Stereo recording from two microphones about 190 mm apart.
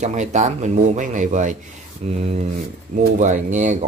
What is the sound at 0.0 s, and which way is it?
Speech, 40° right (ahead or behind).